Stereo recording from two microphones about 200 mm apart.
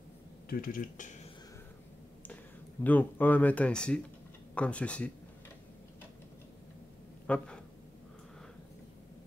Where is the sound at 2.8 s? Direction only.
10° left (ahead or behind).